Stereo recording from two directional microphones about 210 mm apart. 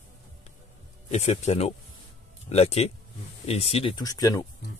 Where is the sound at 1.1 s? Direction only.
30° left (ahead or behind).